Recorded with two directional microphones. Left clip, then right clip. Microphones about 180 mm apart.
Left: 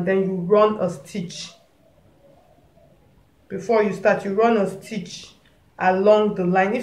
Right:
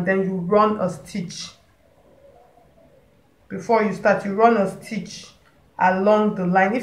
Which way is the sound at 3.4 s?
30° left (ahead or behind).